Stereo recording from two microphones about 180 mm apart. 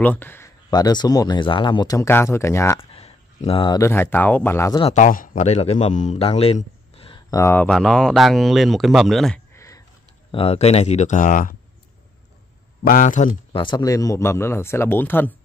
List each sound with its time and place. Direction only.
0.0 s speech: 10° left (ahead or behind)
0.7 s speech: 20° left (ahead or behind)
2.8 s speech: 35° left (ahead or behind); by 4.8 s 15° left (ahead or behind)
4.8 s a man's voice: 45° left (ahead or behind)
7.2 s speech: 15° left (ahead or behind)
9.6 s a sound: 20° left (ahead or behind)
10.3 s speech: 35° left (ahead or behind); by 11.5 s 50° left (ahead or behind)
12.8 s speech: 45° left (ahead or behind)
13.6 s a man's voice: 25° left (ahead or behind)